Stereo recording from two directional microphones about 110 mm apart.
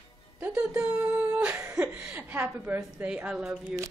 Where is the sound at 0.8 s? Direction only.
10° right (ahead or behind).